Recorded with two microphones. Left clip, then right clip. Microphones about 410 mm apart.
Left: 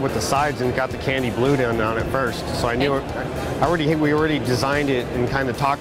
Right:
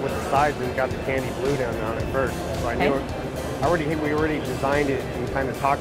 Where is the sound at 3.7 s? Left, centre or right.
Left.